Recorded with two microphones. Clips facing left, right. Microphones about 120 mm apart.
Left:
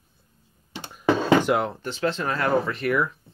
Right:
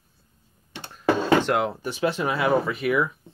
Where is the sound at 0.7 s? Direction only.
10° left (ahead or behind).